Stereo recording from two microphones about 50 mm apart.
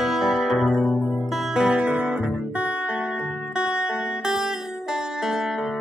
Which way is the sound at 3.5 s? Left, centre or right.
Centre.